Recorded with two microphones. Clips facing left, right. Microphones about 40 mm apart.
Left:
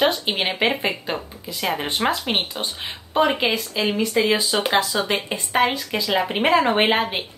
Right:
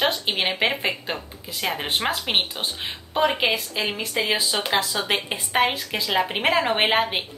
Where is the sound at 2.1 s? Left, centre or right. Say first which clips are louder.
Left 1 dB; centre.